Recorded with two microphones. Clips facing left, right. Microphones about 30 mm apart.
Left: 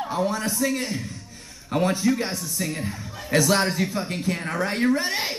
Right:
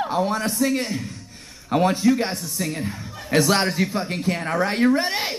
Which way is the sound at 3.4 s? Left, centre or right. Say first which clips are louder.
Right 1 dB; right.